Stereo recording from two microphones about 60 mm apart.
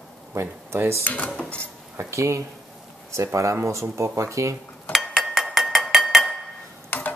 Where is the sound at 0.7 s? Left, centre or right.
Right.